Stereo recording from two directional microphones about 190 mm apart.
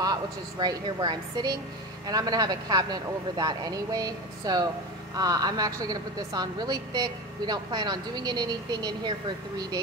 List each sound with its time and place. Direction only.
0.0 s a woman's voice: 20° right (ahead or behind)